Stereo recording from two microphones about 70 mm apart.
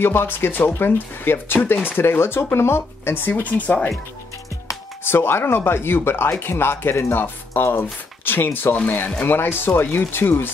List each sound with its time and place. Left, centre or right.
0.0 s speech: left
3.4 s speech: left
5.0 s speech: left